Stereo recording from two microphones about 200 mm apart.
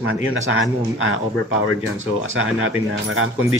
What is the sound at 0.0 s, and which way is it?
Speech, 80° right.